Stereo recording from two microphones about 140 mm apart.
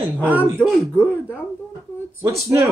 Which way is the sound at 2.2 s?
20° right (ahead or behind).